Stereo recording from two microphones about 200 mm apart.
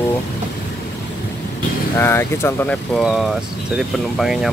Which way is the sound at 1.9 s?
10° left (ahead or behind).